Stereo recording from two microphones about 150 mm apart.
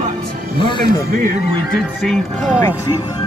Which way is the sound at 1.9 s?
Centre (ahead or behind).